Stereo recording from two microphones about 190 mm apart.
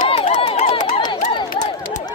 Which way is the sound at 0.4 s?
30° left (ahead or behind).